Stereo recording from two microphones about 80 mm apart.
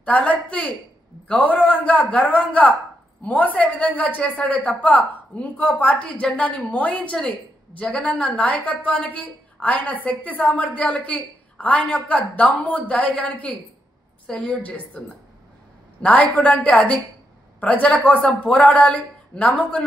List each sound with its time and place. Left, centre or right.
0.0 s a man's voice: centre